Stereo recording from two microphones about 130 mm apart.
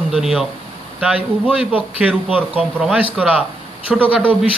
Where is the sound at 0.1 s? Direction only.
5° right (ahead or behind).